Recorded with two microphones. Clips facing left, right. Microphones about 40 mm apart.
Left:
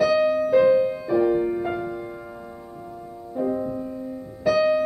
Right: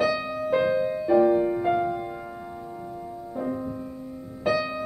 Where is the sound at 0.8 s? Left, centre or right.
Centre.